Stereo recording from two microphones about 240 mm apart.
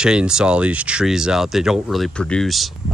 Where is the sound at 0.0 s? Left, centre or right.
Centre.